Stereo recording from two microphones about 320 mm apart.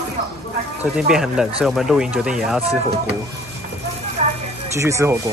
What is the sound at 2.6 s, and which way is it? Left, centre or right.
Speech, centre.